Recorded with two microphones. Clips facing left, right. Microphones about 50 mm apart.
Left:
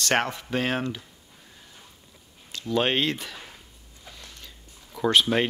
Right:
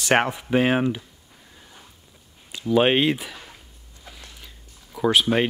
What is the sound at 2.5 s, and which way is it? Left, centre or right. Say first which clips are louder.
Speech: right 6 dB; centre.